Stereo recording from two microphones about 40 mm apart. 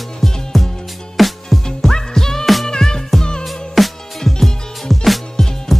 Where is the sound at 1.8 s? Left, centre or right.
Centre.